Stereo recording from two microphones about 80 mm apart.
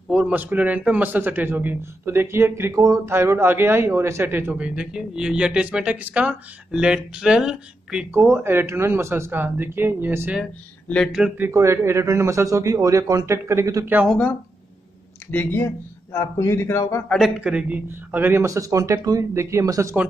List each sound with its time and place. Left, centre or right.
0.1 s a man's voice: centre; by 3.0 s right
3.1 s a man's voice: right
4.6 s speech: centre
8.1 s a man's voice: right
11.1 s speech: centre
11.5 s a man's voice: right
15.3 s speech: left
17.4 s a man's voice: centre
18.4 s a man's voice: right